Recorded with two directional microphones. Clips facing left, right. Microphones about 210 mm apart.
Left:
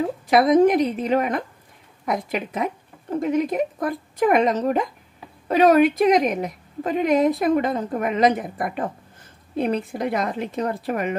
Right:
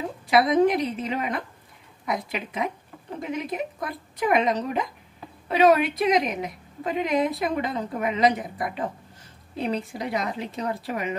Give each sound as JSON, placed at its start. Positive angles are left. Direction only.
{"t": 0.3, "sound": "a woman's voice", "side_deg": 50}